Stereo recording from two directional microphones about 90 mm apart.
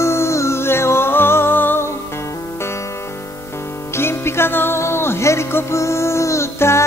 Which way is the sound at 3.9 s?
30° left (ahead or behind).